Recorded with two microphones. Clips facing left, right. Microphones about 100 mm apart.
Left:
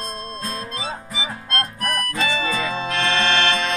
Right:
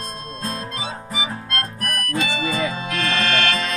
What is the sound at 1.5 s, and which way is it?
Music, 30° left (ahead or behind).